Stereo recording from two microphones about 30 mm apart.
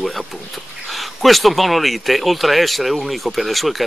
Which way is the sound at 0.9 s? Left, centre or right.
Centre.